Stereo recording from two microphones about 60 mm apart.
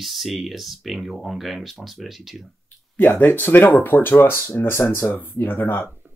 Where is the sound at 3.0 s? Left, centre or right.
Left.